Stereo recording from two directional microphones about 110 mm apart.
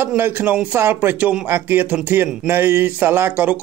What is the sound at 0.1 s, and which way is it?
Speech, 15° right (ahead or behind).